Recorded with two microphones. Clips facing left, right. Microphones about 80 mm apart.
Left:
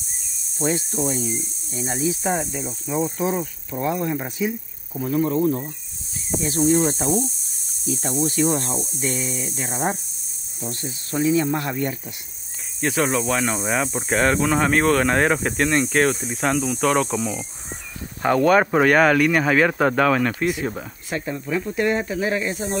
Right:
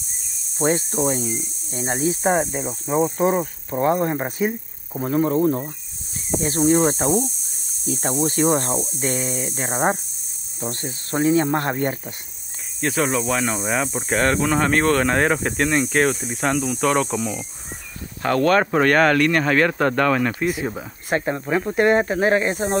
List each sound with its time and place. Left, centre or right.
0.6 s hum: right
1.7 s speech: right
7.8 s hum: right
10.6 s speech: right
12.8 s speech: centre
18.2 s speech: centre
21.1 s speech: right